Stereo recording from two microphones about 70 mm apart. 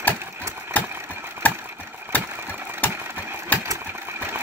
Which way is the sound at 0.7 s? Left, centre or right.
Left.